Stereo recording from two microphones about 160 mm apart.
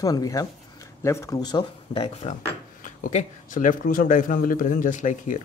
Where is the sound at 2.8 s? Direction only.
55° left (ahead or behind).